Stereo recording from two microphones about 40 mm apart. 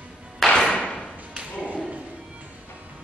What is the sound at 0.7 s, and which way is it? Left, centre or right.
Thump, left.